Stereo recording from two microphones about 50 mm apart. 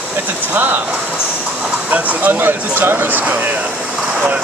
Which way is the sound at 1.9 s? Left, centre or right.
Right.